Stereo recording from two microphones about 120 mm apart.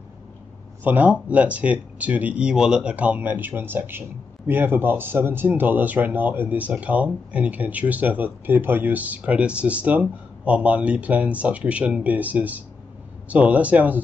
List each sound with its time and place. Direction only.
0.8 s speech: 15° right (ahead or behind)